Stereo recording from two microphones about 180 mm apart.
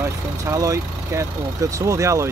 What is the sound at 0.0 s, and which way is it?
Speech, 15° right (ahead or behind).